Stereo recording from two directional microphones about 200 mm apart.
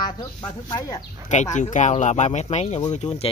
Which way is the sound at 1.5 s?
35° left (ahead or behind).